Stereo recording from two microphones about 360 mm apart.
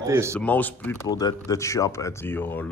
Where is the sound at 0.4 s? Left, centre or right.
Centre.